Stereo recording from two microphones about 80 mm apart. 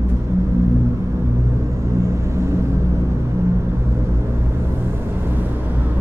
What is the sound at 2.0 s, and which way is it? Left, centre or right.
Vehicle, right.